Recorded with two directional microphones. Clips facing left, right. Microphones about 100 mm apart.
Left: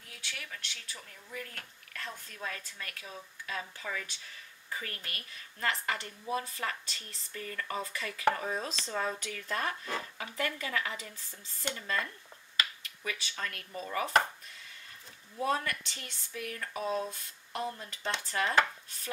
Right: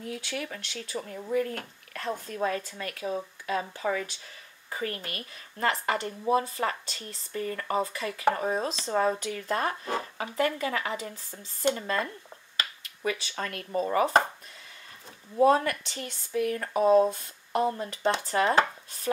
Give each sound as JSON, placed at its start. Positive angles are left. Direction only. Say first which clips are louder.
{"t": 0.3, "sound": "speech", "louder": "right 9 dB", "side_deg": -40}
{"t": 7.9, "sound": "speech", "louder": "right 4 dB", "side_deg": -25}
{"t": 8.9, "sound": "speech", "louder": "right 9 dB", "side_deg": -35}
{"t": 12.5, "sound": "chopping", "louder": "even", "side_deg": -35}
{"t": 15.3, "sound": "speech", "louder": "right 10 dB", "side_deg": -30}